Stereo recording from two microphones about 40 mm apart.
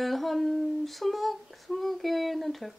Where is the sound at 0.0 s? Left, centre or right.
Centre.